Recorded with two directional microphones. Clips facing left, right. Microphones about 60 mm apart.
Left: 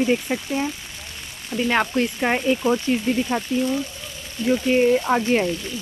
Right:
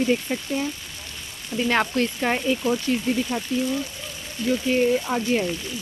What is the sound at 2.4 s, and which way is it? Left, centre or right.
Speech, left.